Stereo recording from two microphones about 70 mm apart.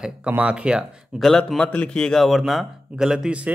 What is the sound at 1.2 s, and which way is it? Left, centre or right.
Speech, centre.